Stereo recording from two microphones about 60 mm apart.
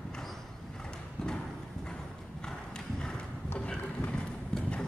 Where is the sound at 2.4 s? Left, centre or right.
Centre.